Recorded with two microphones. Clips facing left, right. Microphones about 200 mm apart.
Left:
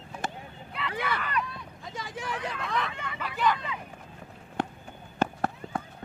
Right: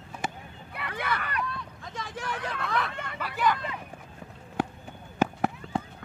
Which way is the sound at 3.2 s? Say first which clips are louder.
Right 1 dB; 5° right (ahead or behind).